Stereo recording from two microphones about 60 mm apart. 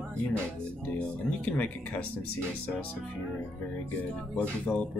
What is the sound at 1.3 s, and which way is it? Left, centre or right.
Speech, left.